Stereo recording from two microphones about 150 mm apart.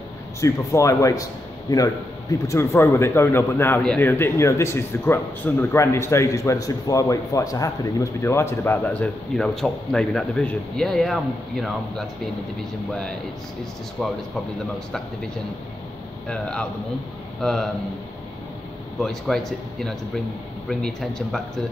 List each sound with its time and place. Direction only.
0.4 s a man's voice: 20° left (ahead or behind); by 11.1 s centre (ahead or behind)
14.0 s speech: centre (ahead or behind)
16.3 s a man's voice: 5° left (ahead or behind)
18.9 s speech: centre (ahead or behind)